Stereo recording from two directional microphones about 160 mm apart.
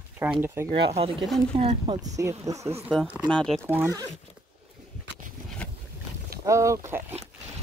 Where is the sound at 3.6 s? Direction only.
15° right (ahead or behind).